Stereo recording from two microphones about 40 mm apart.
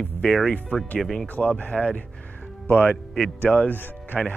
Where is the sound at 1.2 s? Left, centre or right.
Left.